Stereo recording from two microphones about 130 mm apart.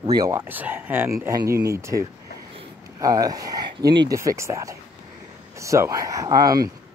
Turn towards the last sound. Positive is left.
turn(degrees=-30)  # may be behind; listen again after turning